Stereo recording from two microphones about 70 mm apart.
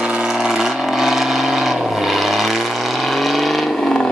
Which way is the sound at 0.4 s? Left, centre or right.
Centre.